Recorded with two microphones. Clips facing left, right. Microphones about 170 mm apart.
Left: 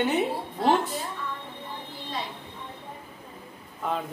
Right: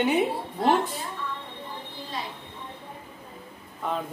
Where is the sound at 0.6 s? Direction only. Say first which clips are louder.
Even; centre (ahead or behind).